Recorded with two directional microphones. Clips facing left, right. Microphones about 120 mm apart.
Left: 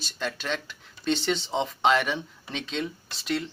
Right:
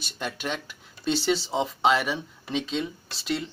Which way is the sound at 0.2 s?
15° right (ahead or behind).